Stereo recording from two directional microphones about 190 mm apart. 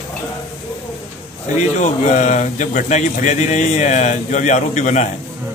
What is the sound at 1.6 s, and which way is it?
Speech, 35° left (ahead or behind).